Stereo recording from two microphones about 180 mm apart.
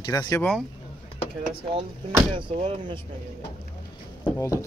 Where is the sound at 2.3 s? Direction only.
30° right (ahead or behind).